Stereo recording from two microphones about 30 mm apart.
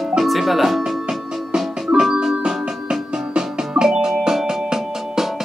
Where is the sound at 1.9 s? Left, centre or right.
Right.